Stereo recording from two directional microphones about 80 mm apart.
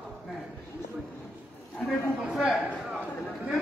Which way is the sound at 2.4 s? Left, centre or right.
Centre.